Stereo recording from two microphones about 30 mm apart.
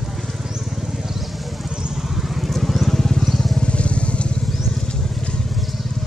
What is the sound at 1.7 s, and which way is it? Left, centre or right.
Vehicle, right.